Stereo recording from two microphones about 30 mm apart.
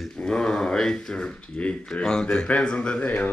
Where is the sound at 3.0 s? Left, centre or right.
Left.